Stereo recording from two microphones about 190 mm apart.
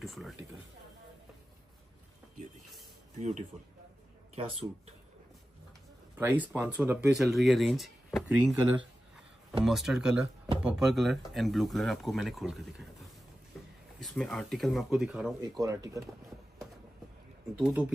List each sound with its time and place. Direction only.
0.0 s speech: centre (ahead or behind)
3.2 s speech: 40° right (ahead or behind)
6.1 s speech: 10° right (ahead or behind)
13.9 s speech: centre (ahead or behind)
15.5 s speech: 20° right (ahead or behind)
17.6 s speech: 5° right (ahead or behind)